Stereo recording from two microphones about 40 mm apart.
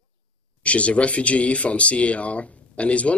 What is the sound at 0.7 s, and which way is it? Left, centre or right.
Speech, left.